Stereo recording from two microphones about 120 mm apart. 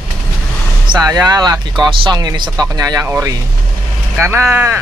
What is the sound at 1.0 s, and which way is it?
Speech, 30° right (ahead or behind).